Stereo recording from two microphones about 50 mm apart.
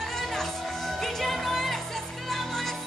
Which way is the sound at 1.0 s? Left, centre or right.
Centre.